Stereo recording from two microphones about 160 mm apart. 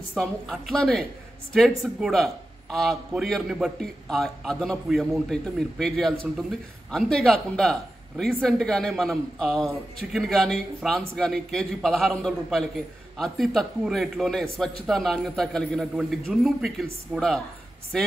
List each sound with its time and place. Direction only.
0.1 s a man's voice: centre (ahead or behind)